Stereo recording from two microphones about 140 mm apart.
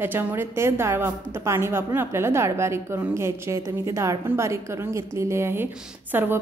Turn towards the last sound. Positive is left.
turn(degrees=-15)  # may be behind; listen again after turning